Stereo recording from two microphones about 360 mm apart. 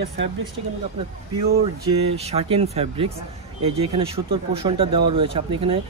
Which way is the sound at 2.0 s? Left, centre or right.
Centre.